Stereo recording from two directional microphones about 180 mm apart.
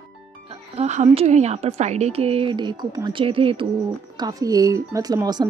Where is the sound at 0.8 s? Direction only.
40° right (ahead or behind).